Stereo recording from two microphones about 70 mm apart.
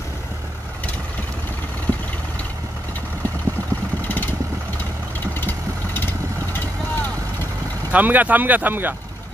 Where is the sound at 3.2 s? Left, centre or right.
Left.